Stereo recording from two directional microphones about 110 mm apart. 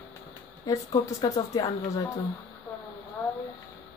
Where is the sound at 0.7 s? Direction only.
30° left (ahead or behind).